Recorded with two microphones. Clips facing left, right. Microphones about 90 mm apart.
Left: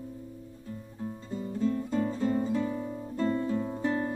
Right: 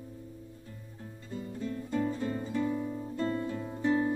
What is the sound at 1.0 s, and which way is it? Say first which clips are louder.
Music: left 5 dB; 25° left (ahead or behind).